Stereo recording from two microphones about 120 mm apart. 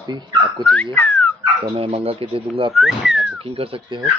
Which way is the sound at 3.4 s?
50° right (ahead or behind).